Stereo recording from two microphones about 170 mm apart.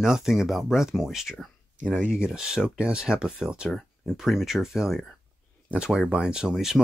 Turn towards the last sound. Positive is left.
turn(degrees=-5)  # may be behind; listen again after turning